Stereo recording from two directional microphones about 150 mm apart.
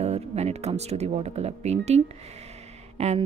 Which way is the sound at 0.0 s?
45° right (ahead or behind).